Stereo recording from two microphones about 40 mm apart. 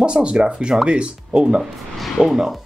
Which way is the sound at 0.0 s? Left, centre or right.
Right.